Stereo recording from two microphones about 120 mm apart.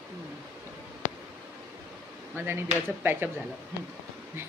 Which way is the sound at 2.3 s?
20° right (ahead or behind).